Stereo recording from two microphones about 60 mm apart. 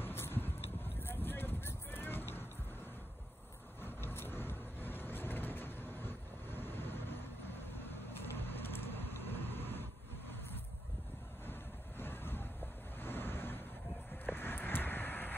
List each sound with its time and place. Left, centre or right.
0.0 s a sound: left
1.0 s vehicle: left
3.8 s vehicle: left
12.0 s vehicle: left
13.0 s waves: left
14.2 s vehicle: left